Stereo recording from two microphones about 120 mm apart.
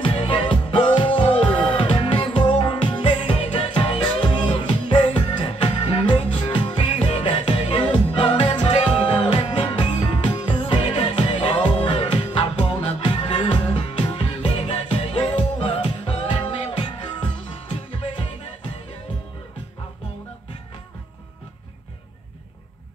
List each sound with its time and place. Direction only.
0.0 s music: 50° left (ahead or behind)
9.8 s music: 40° left (ahead or behind)